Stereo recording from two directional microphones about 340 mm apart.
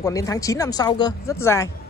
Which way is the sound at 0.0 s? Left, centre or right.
Centre.